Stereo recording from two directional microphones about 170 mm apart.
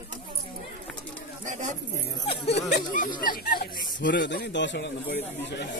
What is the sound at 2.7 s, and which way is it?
Speech, 55° left (ahead or behind).